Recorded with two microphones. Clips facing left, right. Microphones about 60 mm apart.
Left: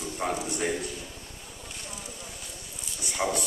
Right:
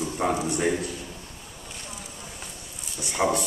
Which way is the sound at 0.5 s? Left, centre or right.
Right.